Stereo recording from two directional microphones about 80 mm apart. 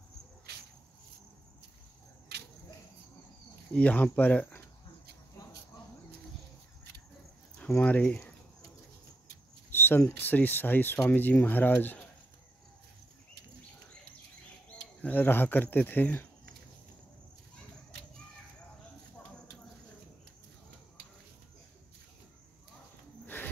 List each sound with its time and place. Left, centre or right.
3.7 s speech: centre
7.8 s speech: centre
9.7 s speech: left
15.0 s speech: left
23.2 s a sound: left